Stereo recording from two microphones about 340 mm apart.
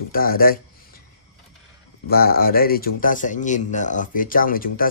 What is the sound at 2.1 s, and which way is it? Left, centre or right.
Speech, left.